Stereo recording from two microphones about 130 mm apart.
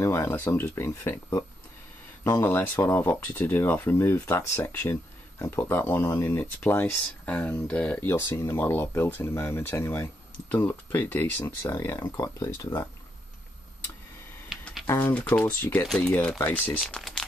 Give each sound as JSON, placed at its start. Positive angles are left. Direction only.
{"t": 0.0, "sound": "speech", "side_deg": 20}
{"t": 2.2, "sound": "speech", "side_deg": 20}
{"t": 14.9, "sound": "speech", "side_deg": 15}